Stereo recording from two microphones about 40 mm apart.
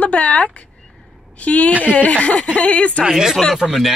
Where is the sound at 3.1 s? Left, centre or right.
Centre.